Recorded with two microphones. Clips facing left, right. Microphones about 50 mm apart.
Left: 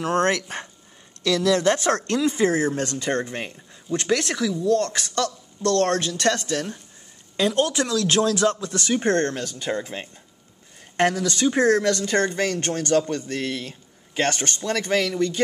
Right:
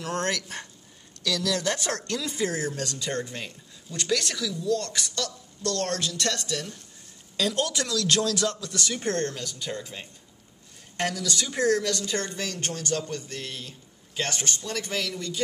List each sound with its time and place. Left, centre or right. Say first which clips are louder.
0.0 s speech: left 7 dB; left
7.3 s speech: left 6 dB; left
11.0 s speech: left 8 dB; left